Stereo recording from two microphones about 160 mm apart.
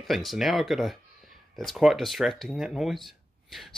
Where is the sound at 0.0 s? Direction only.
Centre (ahead or behind).